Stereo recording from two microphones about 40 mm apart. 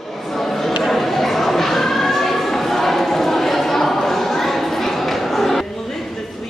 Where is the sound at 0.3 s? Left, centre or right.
Centre.